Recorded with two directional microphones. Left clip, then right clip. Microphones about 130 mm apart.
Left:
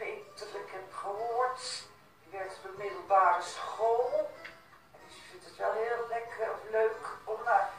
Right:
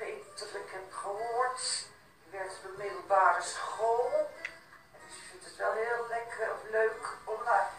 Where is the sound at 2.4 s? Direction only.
15° left (ahead or behind).